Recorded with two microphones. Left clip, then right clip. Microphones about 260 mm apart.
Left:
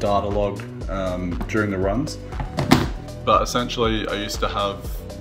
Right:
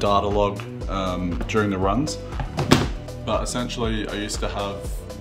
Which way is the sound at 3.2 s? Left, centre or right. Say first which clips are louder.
Left 7 dB; centre.